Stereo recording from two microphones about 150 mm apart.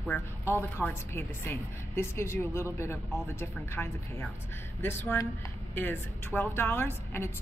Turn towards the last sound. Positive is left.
turn(degrees=15)  # may be behind; listen again after turning